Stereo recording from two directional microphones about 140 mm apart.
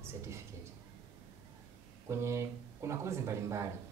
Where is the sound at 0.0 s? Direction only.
20° right (ahead or behind).